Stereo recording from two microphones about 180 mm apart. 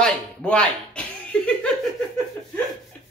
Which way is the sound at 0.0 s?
5° left (ahead or behind).